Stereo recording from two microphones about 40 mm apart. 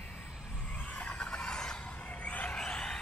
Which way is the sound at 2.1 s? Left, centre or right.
Left.